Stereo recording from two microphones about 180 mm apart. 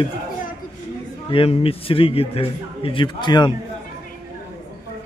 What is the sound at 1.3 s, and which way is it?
A man's voice, 30° left (ahead or behind).